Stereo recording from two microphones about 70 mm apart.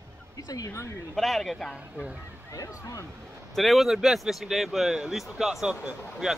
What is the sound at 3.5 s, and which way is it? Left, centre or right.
Speech, centre.